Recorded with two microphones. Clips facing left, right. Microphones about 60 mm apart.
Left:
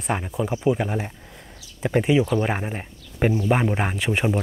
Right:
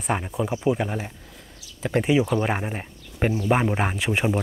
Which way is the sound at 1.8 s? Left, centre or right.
Centre.